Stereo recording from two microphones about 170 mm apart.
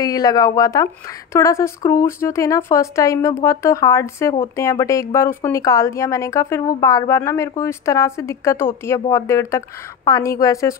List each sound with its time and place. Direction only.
0.0 s speech: 20° left (ahead or behind)